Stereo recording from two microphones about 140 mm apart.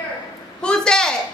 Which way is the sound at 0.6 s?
5° left (ahead or behind).